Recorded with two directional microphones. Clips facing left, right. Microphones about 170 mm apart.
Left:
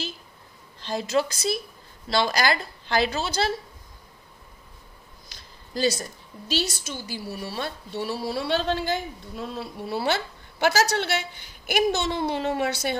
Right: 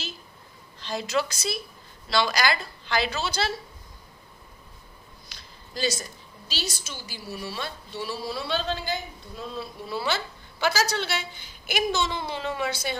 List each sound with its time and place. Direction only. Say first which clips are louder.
0.8 s a woman's voice: left 3 dB; 45° left (ahead or behind)
5.3 s a sound: left 5 dB; 45° left (ahead or behind)
6.5 s a woman's voice: left 7 dB; 60° left (ahead or behind)